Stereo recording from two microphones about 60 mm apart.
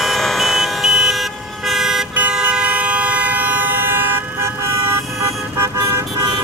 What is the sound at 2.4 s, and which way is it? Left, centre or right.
Vehicle, right.